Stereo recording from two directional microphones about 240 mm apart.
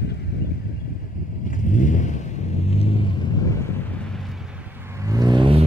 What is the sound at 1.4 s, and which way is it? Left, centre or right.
Vehicle, left.